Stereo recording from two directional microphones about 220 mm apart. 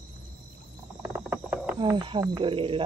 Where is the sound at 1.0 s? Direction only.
10° right (ahead or behind).